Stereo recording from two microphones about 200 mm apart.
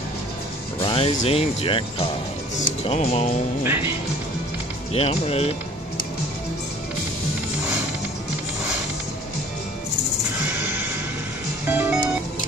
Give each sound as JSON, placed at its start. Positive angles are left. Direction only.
{"t": 0.7, "sound": "speech", "side_deg": 25}
{"t": 3.6, "sound": "speech", "side_deg": -10}
{"t": 4.9, "sound": "speech", "side_deg": 30}
{"t": 11.6, "sound": "music", "side_deg": -10}